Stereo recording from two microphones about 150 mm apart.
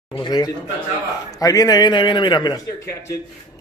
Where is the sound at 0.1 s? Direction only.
30° left (ahead or behind).